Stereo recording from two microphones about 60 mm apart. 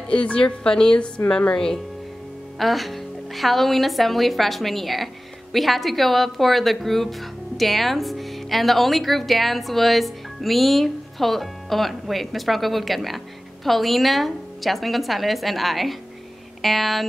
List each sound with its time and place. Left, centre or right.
0.1 s a woman's voice: centre
2.6 s speech: centre